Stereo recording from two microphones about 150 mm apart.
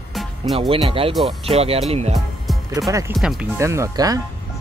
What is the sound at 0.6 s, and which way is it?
Speech, 40° right (ahead or behind).